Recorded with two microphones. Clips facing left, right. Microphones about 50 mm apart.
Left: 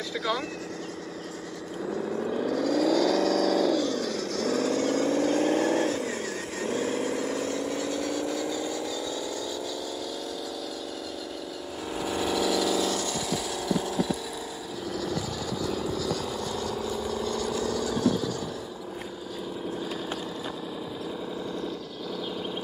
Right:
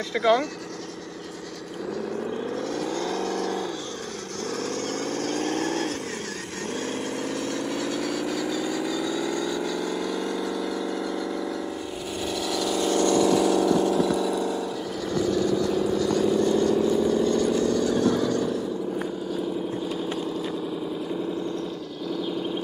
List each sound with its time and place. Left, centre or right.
2.6 s vehicle: right
4.6 s vehicle: centre
8.1 s vehicle: right
12.2 s a sound: centre
15.0 s vehicle: centre